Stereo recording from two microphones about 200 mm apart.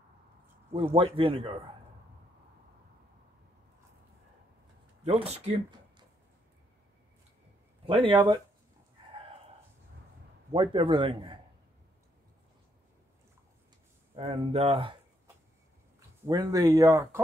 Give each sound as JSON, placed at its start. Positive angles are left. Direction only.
{"t": 0.9, "sound": "speech", "side_deg": -30}
{"t": 5.0, "sound": "speech", "side_deg": -30}
{"t": 7.8, "sound": "speech", "side_deg": -25}
{"t": 10.5, "sound": "speech", "side_deg": -25}
{"t": 14.1, "sound": "speech", "side_deg": -30}
{"t": 16.3, "sound": "speech", "side_deg": -20}